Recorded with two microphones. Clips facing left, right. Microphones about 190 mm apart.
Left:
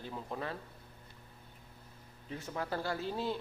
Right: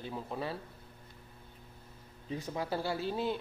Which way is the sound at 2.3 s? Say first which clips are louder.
Right 2 dB; 15° right (ahead or behind).